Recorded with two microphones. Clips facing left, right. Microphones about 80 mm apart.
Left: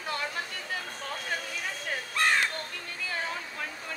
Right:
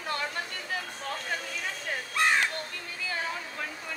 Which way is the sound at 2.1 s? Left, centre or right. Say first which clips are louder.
Right 1 dB; centre.